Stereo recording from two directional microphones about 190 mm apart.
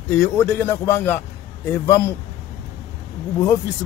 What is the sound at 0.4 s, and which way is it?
Speech, 15° left (ahead or behind).